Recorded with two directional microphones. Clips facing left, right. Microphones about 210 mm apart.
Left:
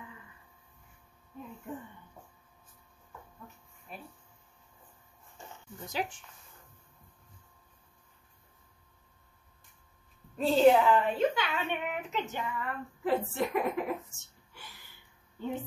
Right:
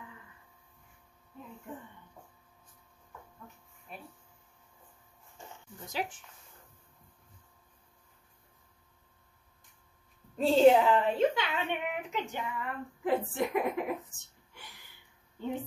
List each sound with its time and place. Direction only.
3.9 s a sound: centre (ahead or behind)
5.9 s speech: centre (ahead or behind)
10.3 s a woman's voice: 25° right (ahead or behind)